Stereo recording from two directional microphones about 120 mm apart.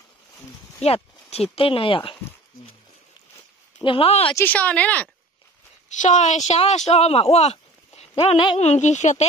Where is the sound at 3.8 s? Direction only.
50° left (ahead or behind).